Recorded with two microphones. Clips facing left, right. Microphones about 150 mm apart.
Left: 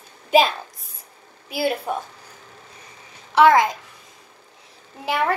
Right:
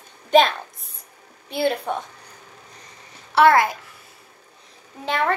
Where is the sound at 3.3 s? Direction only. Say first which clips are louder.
Left 1 dB; 15° left (ahead or behind).